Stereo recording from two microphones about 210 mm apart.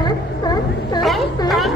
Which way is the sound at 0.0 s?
20° left (ahead or behind).